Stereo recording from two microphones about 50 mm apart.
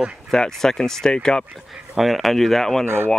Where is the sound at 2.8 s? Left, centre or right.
Right.